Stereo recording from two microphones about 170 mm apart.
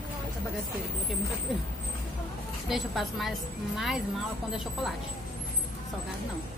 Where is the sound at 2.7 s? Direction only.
Centre (ahead or behind).